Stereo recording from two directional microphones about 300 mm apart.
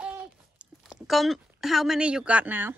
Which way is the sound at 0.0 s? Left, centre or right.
Centre.